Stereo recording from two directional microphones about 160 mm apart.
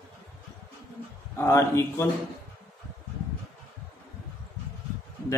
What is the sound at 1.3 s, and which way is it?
Speech, 15° left (ahead or behind).